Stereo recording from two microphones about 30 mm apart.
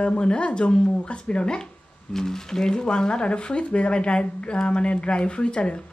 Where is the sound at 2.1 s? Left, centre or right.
Centre; by 5.8 s left.